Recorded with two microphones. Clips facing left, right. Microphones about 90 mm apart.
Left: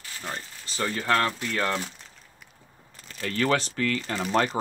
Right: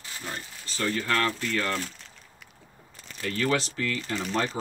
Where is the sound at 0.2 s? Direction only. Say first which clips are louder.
Left 2 dB; 25° left (ahead or behind).